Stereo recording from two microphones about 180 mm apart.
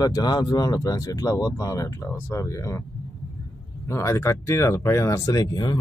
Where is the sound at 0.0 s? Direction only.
20° left (ahead or behind).